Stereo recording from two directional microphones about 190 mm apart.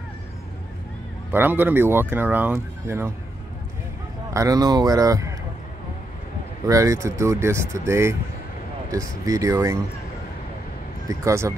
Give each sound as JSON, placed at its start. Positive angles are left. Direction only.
{"t": 1.3, "sound": "speech", "side_deg": -10}
{"t": 4.3, "sound": "speech", "side_deg": -15}
{"t": 6.7, "sound": "speech", "side_deg": -15}
{"t": 11.1, "sound": "speech", "side_deg": -15}